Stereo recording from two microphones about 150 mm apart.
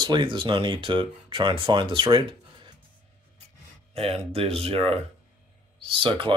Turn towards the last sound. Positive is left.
turn(degrees=-35)  # may be behind; listen again after turning